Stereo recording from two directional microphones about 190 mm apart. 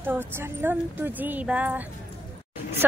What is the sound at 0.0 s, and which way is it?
A woman's voice, 10° right (ahead or behind).